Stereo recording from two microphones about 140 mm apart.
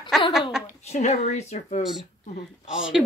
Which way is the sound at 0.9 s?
55° left (ahead or behind).